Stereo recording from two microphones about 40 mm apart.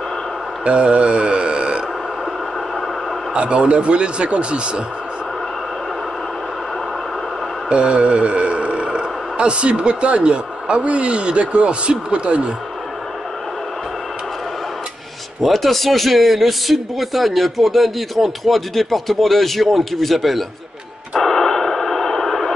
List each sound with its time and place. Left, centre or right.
0.7 s mantra: right
3.3 s speech: right
7.7 s speech: right
15.4 s speech: centre
21.2 s radio: centre